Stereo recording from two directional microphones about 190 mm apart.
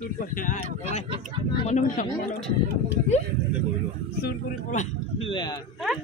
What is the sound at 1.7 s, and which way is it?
Speech, 40° left (ahead or behind).